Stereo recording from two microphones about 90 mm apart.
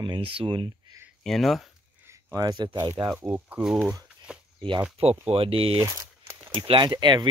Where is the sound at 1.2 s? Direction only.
Centre (ahead or behind).